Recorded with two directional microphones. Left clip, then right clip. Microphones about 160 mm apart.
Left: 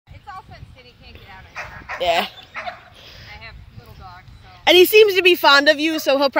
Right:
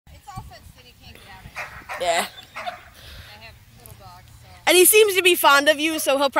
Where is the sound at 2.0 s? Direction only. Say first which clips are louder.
Left 3 dB; 30° left (ahead or behind).